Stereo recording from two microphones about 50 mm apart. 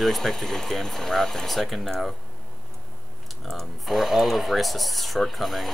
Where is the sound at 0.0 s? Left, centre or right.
Centre.